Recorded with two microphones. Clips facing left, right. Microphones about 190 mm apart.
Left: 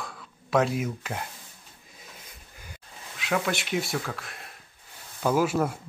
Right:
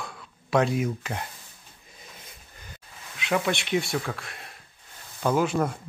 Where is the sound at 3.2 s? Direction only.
Centre (ahead or behind).